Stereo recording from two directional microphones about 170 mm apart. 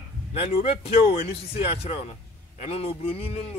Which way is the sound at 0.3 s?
35° left (ahead or behind).